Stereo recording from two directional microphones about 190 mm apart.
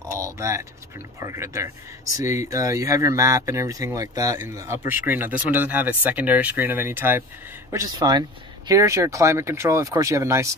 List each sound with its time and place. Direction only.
0.1 s vehicle: 15° right (ahead or behind)
1.2 s speech: 15° right (ahead or behind)